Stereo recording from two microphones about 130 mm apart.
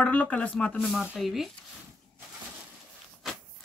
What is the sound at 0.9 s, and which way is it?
Speech, 5° right (ahead or behind).